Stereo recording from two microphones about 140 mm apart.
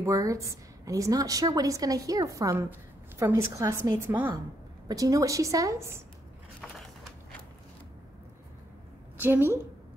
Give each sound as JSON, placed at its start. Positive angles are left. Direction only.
{"t": 0.0, "sound": "a woman's voice", "side_deg": -25}
{"t": 9.2, "sound": "a woman's voice", "side_deg": -15}